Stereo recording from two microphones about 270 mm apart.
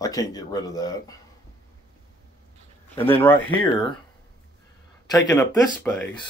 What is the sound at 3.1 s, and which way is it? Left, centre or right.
Speech, centre.